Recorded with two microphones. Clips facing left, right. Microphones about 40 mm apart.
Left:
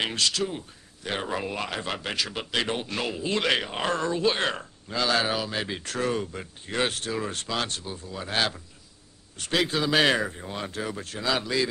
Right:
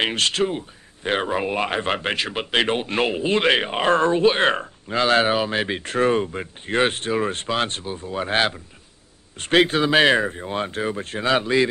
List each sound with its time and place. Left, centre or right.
0.0 s speech: right